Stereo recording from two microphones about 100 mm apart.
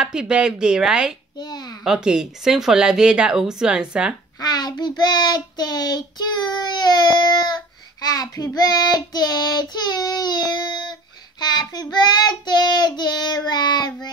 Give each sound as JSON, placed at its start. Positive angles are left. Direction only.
{"t": 0.0, "sound": "speech", "side_deg": -10}
{"t": 1.4, "sound": "child singing", "side_deg": 45}
{"t": 1.9, "sound": "speech", "side_deg": -10}
{"t": 4.4, "sound": "child singing", "side_deg": 45}